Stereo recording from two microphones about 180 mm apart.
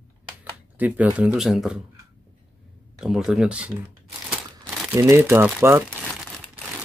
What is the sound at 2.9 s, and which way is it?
Speech, centre (ahead or behind).